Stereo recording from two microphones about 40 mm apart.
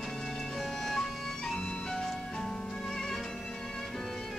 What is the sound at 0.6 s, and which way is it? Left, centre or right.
Music, centre.